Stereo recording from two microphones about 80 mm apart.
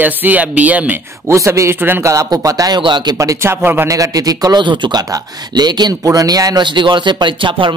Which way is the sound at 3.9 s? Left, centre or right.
Right.